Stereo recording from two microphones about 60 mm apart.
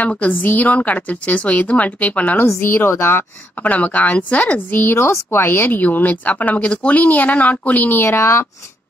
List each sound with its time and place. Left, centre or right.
0.2 s speech: left
2.3 s speech: left
3.6 s speech: left
4.8 s speech: left
8.0 s speech: left